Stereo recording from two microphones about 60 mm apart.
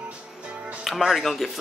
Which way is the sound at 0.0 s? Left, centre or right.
Centre.